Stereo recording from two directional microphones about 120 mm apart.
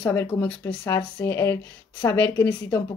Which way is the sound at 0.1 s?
15° left (ahead or behind).